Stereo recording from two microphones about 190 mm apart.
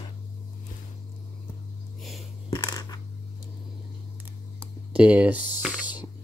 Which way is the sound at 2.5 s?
20° left (ahead or behind).